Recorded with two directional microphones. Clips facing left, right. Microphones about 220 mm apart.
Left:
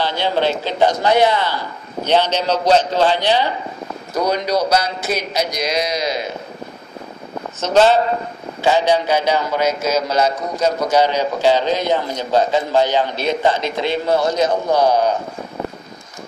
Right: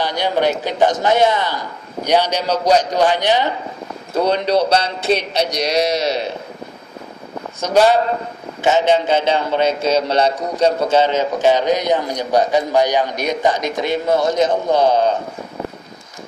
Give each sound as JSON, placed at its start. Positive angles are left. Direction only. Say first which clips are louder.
{"t": 0.1, "sound": "a man's voice", "louder": "right 1 dB", "side_deg": -15}
{"t": 4.1, "sound": "a man's voice", "louder": "right 2 dB", "side_deg": -30}
{"t": 7.6, "sound": "a man's voice", "louder": "even", "side_deg": -10}
{"t": 8.6, "sound": "a man's voice", "louder": "right 1 dB", "side_deg": -25}